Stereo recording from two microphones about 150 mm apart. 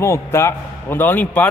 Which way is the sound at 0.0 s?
15° left (ahead or behind).